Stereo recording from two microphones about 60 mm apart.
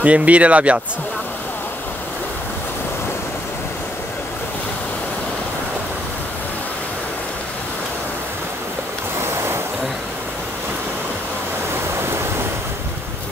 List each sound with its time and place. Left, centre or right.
0.0 s speech: right
9.2 s vehicle: right